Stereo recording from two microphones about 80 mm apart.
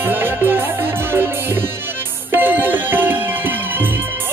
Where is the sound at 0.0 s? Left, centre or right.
Right.